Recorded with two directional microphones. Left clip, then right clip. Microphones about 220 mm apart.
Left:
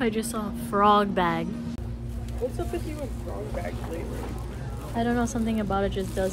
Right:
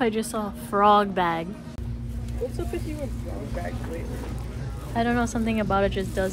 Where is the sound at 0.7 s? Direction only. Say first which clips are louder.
Right 2 dB; 10° right (ahead or behind).